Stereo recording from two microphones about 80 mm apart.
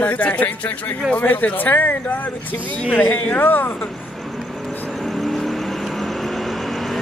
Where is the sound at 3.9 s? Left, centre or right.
Centre.